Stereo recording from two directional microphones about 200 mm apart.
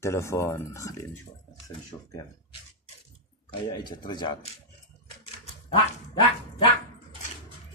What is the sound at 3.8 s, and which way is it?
Speech, 20° left (ahead or behind).